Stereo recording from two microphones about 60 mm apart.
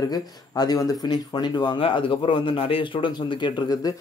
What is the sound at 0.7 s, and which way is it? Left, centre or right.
Speech, left.